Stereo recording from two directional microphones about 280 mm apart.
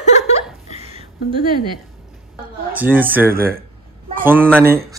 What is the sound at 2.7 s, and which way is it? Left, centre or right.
Speech, centre.